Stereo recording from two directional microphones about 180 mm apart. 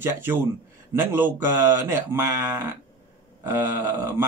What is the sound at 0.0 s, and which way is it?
Speech, 15° right (ahead or behind).